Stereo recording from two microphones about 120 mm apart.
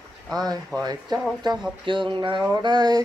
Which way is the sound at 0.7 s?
30° right (ahead or behind).